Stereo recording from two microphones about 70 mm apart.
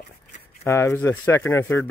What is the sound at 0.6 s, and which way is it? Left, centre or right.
Speech, left.